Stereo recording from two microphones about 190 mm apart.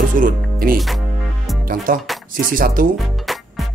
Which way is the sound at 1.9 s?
45° right (ahead or behind).